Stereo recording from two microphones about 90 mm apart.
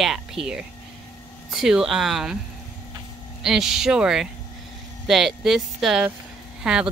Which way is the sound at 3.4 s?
5° right (ahead or behind).